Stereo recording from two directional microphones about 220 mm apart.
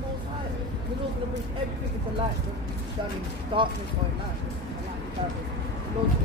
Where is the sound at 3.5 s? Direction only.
20° right (ahead or behind).